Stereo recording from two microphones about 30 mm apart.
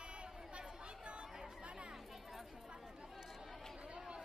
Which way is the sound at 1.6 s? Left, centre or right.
Right.